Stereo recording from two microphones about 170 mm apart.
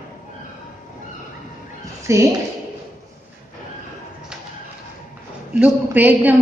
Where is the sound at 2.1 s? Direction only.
15° right (ahead or behind).